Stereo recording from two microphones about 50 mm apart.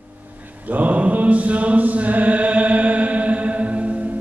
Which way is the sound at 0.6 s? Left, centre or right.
Right.